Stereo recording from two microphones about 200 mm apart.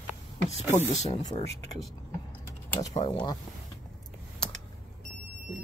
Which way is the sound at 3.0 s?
20° left (ahead or behind).